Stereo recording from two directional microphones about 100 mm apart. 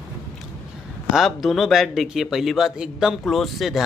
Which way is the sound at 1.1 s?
5° right (ahead or behind).